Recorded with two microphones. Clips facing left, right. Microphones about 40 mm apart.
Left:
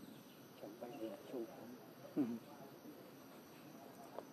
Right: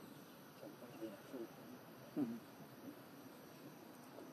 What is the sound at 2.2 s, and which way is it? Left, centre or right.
Speech, centre.